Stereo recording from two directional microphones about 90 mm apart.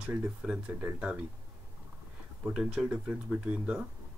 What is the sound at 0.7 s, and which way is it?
Speech, 25° right (ahead or behind).